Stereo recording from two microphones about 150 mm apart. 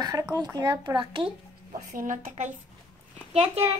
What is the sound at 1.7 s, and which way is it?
Speech, 60° right (ahead or behind).